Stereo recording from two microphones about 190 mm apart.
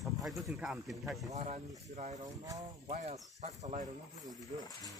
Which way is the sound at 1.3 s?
40° right (ahead or behind).